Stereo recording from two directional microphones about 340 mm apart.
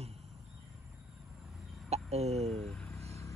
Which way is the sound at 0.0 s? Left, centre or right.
Centre.